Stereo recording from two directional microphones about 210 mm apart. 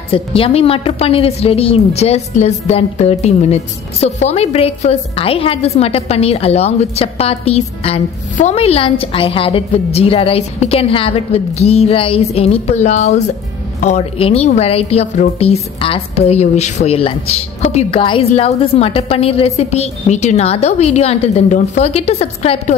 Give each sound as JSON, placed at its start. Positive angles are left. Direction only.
{"t": 0.1, "sound": "a woman's voice", "side_deg": 25}